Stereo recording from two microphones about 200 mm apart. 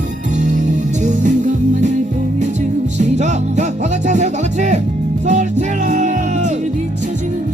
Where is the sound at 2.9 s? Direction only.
35° right (ahead or behind).